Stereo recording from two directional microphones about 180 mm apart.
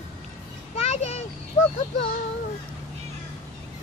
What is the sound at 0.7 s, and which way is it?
Children playing, 35° left (ahead or behind).